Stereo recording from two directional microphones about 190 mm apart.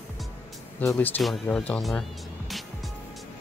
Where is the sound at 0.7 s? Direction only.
10° left (ahead or behind).